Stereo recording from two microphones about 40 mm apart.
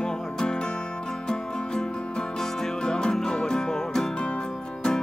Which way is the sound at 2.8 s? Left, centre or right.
Centre.